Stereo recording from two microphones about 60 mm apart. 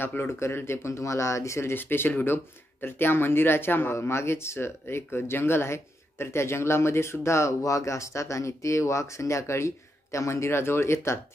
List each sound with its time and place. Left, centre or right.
0.0 s speech: left
1.8 s speech: left